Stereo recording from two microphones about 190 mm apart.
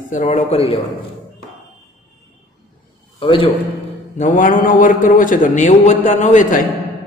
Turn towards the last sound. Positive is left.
turn(degrees=40)  # may be behind; listen again after turning